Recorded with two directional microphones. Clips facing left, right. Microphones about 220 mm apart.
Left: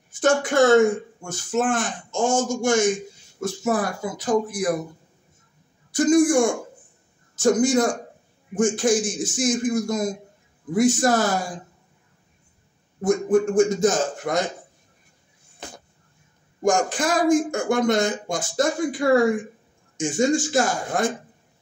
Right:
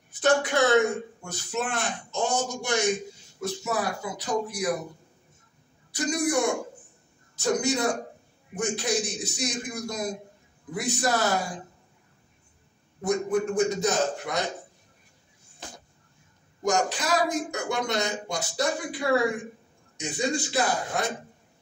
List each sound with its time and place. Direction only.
0.2 s speech: 50° left (ahead or behind)
5.9 s a woman's voice: 50° left (ahead or behind)
13.0 s speech: 45° left (ahead or behind)
16.6 s speech: 50° left (ahead or behind)
20.0 s speech: 50° left (ahead or behind)